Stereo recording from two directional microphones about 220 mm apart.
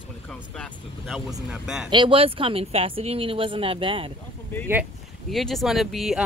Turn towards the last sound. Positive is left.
turn(degrees=0)  # may be behind; listen again after turning